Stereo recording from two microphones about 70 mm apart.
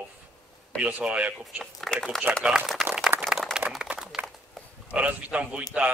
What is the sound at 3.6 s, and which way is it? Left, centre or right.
Run, centre.